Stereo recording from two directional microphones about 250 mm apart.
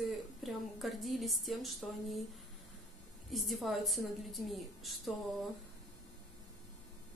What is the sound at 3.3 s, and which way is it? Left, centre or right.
A woman's voice, centre.